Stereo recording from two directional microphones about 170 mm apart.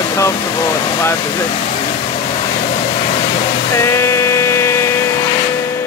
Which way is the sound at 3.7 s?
15° left (ahead or behind).